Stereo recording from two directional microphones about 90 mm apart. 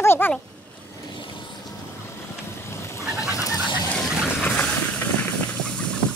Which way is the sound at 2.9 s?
35° left (ahead or behind).